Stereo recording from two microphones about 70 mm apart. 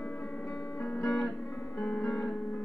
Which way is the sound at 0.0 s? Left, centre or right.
Left.